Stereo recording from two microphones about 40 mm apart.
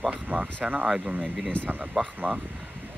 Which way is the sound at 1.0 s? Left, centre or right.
Right.